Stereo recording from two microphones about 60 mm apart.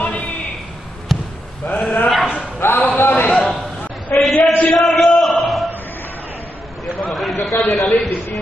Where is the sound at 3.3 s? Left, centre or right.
Centre.